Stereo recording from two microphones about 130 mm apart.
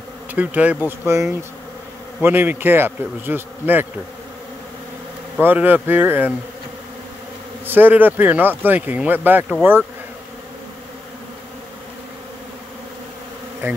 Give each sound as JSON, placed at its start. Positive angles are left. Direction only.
{"t": 0.3, "sound": "speech", "side_deg": -10}
{"t": 5.4, "sound": "speech", "side_deg": -15}
{"t": 7.6, "sound": "speech", "side_deg": -15}
{"t": 13.6, "sound": "speech", "side_deg": -20}